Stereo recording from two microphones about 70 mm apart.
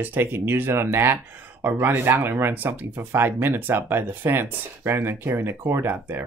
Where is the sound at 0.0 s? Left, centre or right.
Right.